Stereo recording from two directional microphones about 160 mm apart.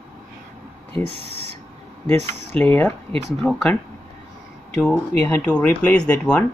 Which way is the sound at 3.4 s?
5° left (ahead or behind).